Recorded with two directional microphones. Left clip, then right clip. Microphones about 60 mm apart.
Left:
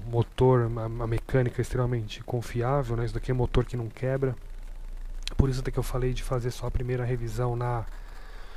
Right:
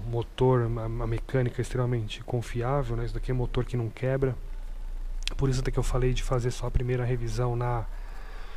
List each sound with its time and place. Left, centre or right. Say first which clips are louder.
0.1 s speech: left 2 dB; left
3.0 s speech: left 3 dB; left
3.9 s speech: right 1 dB; centre